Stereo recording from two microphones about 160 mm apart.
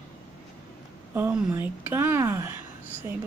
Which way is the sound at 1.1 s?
10° right (ahead or behind).